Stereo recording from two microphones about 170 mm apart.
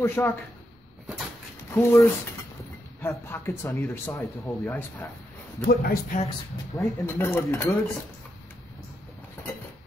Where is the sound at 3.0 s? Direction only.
15° left (ahead or behind).